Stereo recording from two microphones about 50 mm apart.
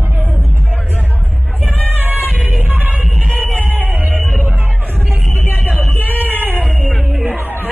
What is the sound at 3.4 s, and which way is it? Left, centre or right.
Music, right.